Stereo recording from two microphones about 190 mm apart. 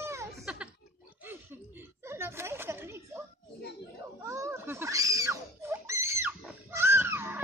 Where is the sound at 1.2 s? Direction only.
10° right (ahead or behind).